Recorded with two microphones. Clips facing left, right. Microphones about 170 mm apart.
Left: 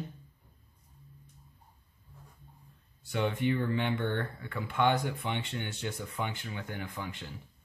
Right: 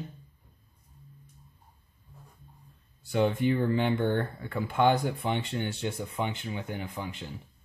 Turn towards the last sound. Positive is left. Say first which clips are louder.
# right 3 dB
turn(degrees=-25)  # may be behind; listen again after turning